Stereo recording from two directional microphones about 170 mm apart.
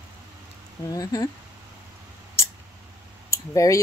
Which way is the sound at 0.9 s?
20° left (ahead or behind).